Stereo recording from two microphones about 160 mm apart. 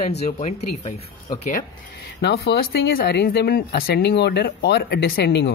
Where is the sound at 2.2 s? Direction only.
90° left.